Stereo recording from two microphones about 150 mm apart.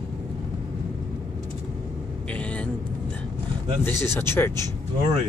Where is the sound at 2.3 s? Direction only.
10° left (ahead or behind).